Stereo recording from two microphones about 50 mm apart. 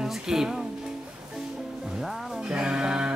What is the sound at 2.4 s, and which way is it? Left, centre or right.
Speech, right.